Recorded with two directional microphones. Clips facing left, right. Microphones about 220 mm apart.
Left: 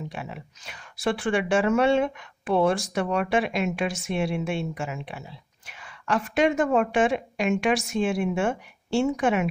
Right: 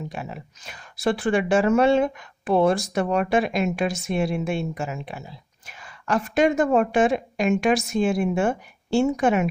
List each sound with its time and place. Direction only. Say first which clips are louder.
0.1 s speech: right 2 dB; 40° right (ahead or behind)